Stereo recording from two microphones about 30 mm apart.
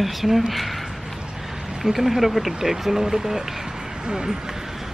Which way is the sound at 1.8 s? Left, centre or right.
Centre.